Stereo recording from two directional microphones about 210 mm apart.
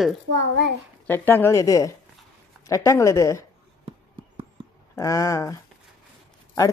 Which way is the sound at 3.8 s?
25° right (ahead or behind).